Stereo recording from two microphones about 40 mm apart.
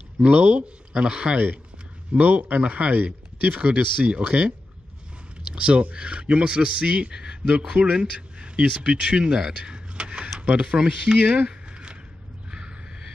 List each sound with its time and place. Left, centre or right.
0.2 s speech: right
2.1 s speech: right
11.1 s speech: right
11.4 s a sound: right